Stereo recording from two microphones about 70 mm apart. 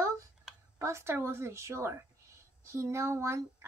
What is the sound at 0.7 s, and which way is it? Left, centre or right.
A woman's voice, right.